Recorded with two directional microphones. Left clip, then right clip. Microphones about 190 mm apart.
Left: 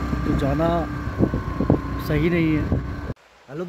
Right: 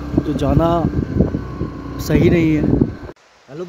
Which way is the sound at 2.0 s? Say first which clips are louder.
Right 7 dB; 35° right (ahead or behind).